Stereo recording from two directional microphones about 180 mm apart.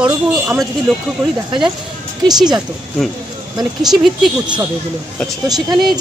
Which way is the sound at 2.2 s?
20° right (ahead or behind).